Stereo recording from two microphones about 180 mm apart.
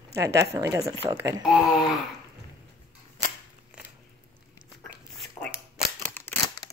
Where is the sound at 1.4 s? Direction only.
Centre (ahead or behind).